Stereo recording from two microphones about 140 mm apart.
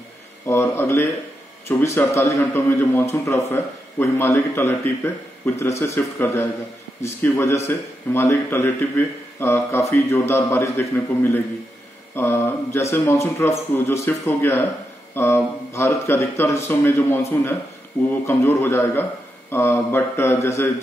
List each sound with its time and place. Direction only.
0.5 s a man's voice: 15° left (ahead or behind)